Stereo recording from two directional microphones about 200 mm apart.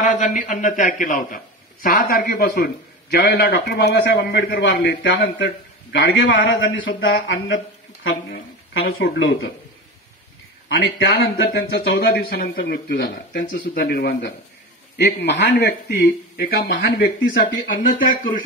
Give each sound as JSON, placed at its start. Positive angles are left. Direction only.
{"t": 0.1, "sound": "a man's voice", "side_deg": 40}
{"t": 10.8, "sound": "speech", "side_deg": 60}